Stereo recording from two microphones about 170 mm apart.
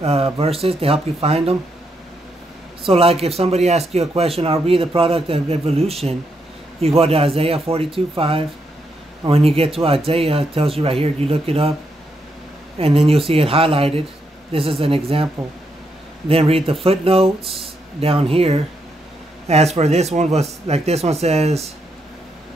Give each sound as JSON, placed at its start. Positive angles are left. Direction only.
{"t": 0.0, "sound": "speech", "side_deg": -35}
{"t": 2.8, "sound": "speech", "side_deg": -35}
{"t": 12.7, "sound": "speech", "side_deg": -35}
{"t": 16.3, "sound": "speech", "side_deg": -35}